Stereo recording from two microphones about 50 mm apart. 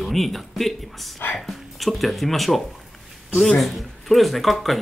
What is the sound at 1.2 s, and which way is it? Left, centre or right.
Music, left.